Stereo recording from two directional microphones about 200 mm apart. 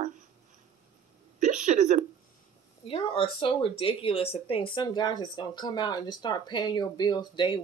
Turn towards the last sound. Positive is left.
turn(degrees=20)  # may be behind; listen again after turning